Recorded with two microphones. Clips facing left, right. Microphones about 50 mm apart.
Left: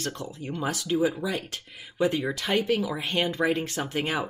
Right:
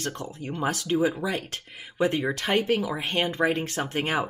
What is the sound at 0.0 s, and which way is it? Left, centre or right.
Speech, right.